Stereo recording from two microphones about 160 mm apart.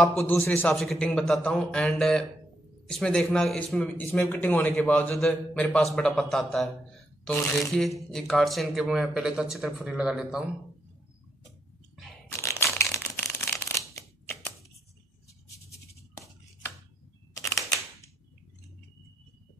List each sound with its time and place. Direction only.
0.0 s a man's voice: 5° left (ahead or behind)
12.3 s a sound: 15° left (ahead or behind)
12.7 s shuffling cards: 15° left (ahead or behind)
17.4 s camera: 20° left (ahead or behind)